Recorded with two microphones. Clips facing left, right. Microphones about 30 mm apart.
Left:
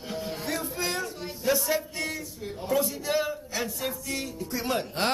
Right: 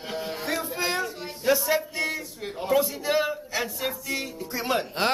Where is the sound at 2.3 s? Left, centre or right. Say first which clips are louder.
Right 3 dB; right.